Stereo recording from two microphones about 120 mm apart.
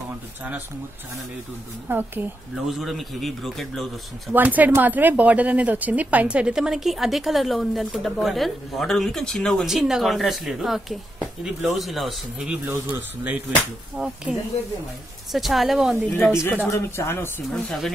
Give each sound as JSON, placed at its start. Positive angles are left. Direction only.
{"t": 1.9, "sound": "speech", "side_deg": -15}
{"t": 2.5, "sound": "speech", "side_deg": 0}
{"t": 4.3, "sound": "speech", "side_deg": -15}
{"t": 12.6, "sound": "a man's voice", "side_deg": -20}
{"t": 13.9, "sound": "speech", "side_deg": -5}
{"t": 15.3, "sound": "speech", "side_deg": 0}
{"t": 16.7, "sound": "speech", "side_deg": 20}
{"t": 17.5, "sound": "speech", "side_deg": 0}